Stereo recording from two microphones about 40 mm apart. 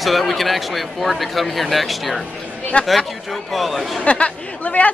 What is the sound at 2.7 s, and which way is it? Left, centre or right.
Speech, left.